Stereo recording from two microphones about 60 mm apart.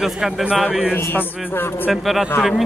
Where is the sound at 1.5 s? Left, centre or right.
Left.